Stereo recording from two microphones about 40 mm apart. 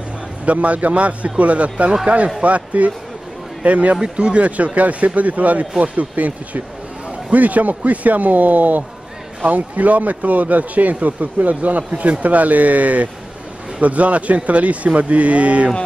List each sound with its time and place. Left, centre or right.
0.5 s a man's voice: right